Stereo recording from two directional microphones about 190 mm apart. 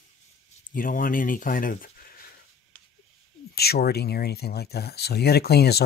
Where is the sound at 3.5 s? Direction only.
55° left (ahead or behind).